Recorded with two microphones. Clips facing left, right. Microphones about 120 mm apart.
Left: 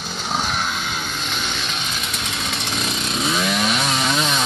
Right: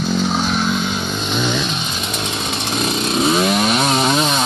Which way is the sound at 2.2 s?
30° right (ahead or behind).